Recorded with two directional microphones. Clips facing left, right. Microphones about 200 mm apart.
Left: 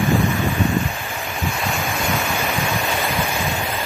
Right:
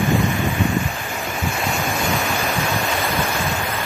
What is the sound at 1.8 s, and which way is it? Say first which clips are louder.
Waves: right 1 dB; centre (ahead or behind).